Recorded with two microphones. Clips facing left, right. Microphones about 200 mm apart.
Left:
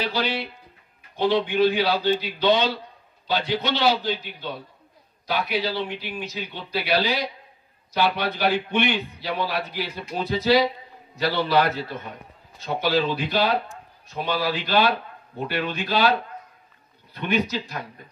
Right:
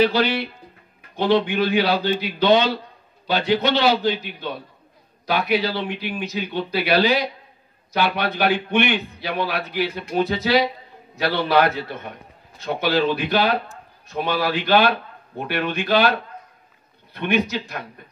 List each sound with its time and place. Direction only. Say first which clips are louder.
0.0 s a man's voice: right 7 dB; 65° right (ahead or behind)
12.5 s a man's voice: right 2 dB; 70° right (ahead or behind)